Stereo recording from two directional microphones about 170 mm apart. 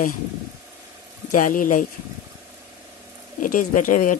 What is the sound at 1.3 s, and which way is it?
Speech, 50° left (ahead or behind).